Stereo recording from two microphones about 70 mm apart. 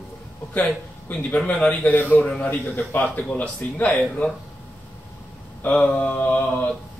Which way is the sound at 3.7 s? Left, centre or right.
Left.